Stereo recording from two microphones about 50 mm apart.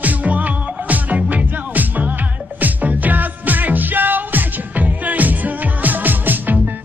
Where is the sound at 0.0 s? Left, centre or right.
Right.